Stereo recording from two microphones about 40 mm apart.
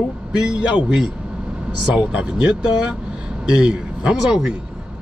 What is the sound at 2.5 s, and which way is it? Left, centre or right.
A man's voice, right.